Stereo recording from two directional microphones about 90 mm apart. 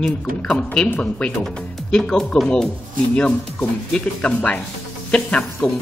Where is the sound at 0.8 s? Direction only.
25° left (ahead or behind).